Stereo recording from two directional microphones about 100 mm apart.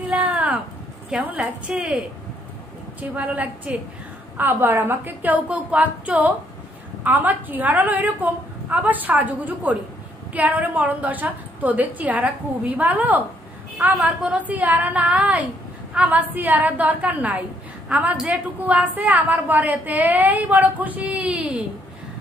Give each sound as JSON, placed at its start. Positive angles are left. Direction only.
{"t": 0.2, "sound": "a sound", "side_deg": -15}
{"t": 1.1, "sound": "a woman's voice", "side_deg": -15}
{"t": 3.0, "sound": "a woman's voice", "side_deg": -15}